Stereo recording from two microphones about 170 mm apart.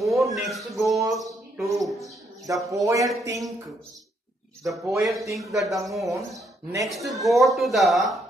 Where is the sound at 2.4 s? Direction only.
20° right (ahead or behind).